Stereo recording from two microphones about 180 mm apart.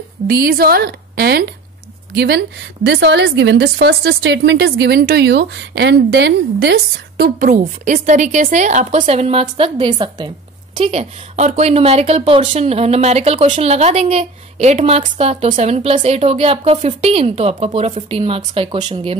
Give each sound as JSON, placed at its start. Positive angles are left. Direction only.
{"t": 0.3, "sound": "a woman's voice", "side_deg": -55}
{"t": 7.4, "sound": "a woman's voice", "side_deg": -45}